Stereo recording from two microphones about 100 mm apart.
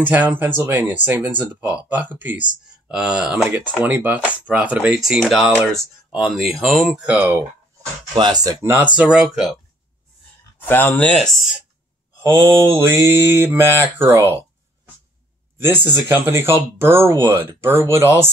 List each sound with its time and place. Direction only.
0.0 s speech: 20° right (ahead or behind)
3.8 s speech: 20° right (ahead or behind)
7.2 s speech: 25° right (ahead or behind)
8.1 s speech: 45° right (ahead or behind)
8.6 s speech: 15° right (ahead or behind)
10.6 s speech: 20° left (ahead or behind)
12.2 s speech: 25° right (ahead or behind)
15.5 s speech: 25° right (ahead or behind)